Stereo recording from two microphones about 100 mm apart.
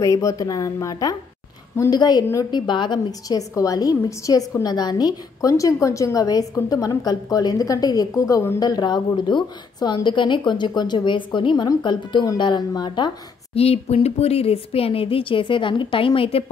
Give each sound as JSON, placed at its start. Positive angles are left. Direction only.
{"t": 0.0, "sound": "a woman's voice", "side_deg": 30}
{"t": 8.5, "sound": "a woman's voice", "side_deg": 40}
{"t": 13.6, "sound": "speech", "side_deg": 90}
{"t": 16.2, "sound": "speech", "side_deg": 70}